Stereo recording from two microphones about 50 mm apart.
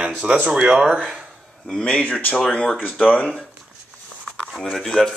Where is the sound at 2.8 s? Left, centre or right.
Left.